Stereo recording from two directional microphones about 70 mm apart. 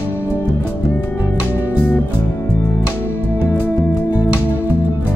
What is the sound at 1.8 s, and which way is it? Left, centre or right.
Music, centre.